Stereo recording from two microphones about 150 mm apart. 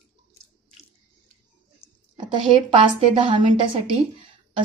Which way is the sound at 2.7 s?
35° right (ahead or behind).